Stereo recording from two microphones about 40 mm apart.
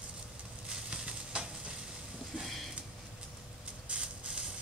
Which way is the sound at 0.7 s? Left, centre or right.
Centre.